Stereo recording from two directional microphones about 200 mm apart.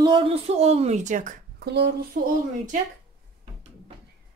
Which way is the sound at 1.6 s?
60° right (ahead or behind).